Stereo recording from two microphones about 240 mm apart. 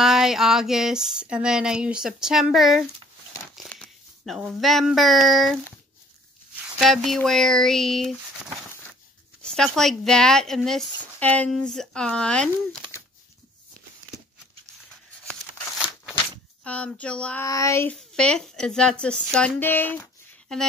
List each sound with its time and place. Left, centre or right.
0.0 s speech: centre
6.8 s speech: centre
9.4 s speech: centre
16.6 s speech: centre